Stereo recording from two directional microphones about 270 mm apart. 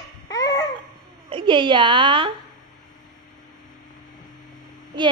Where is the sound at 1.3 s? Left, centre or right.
Centre.